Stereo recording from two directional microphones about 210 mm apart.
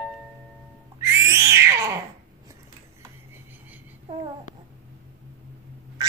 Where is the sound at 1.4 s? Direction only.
15° right (ahead or behind).